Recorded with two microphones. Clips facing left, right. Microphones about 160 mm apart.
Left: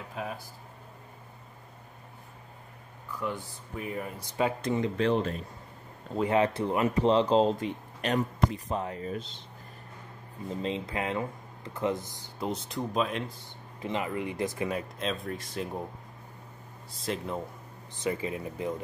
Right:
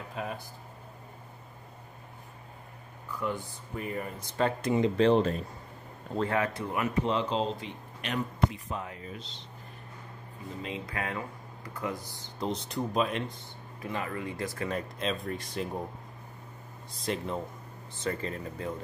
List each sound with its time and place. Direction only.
0.1 s speech: centre (ahead or behind)
3.1 s speech: centre (ahead or behind)
4.6 s speech: 5° right (ahead or behind)
4.8 s speech: 30° right (ahead or behind)
6.1 s speech: 20° left (ahead or behind); by 9.4 s 45° left (ahead or behind)
10.6 s speech: 30° left (ahead or behind)
12.6 s speech: centre (ahead or behind)
13.7 s speech: 20° left (ahead or behind)
14.8 s speech: centre (ahead or behind)
16.9 s speech: centre (ahead or behind)
18.0 s speech: 10° left (ahead or behind)